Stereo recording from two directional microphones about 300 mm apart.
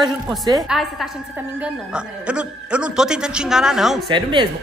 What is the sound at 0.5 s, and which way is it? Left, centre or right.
A woman's voice, centre.